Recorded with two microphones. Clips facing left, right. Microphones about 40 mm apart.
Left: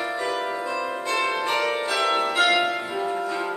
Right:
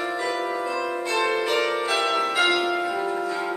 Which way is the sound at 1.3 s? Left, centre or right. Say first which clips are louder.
Right 1 dB; centre.